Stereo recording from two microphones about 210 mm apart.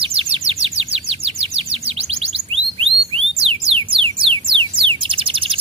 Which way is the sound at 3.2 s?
25° right (ahead or behind).